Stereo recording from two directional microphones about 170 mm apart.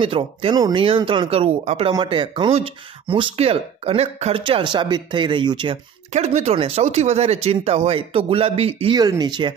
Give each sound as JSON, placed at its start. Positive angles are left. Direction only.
{"t": 0.0, "sound": "speech", "side_deg": -30}
{"t": 2.0, "sound": "speech", "side_deg": -30}
{"t": 6.1, "sound": "speech", "side_deg": -40}
{"t": 8.9, "sound": "speech", "side_deg": -25}